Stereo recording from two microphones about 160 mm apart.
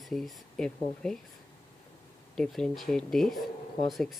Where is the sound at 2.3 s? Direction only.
5° left (ahead or behind).